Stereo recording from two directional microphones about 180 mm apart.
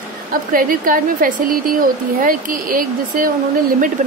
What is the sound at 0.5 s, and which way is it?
Speech, 50° right (ahead or behind).